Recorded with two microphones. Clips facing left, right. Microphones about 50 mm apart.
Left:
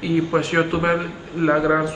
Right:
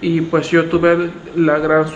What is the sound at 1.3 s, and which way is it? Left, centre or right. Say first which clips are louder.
Speech: right 5 dB; right.